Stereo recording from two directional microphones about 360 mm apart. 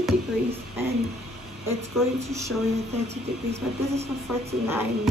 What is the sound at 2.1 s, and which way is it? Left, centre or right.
Speech, centre.